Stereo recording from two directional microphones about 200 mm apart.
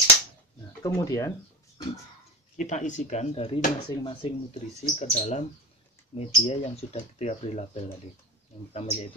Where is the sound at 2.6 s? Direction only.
35° left (ahead or behind).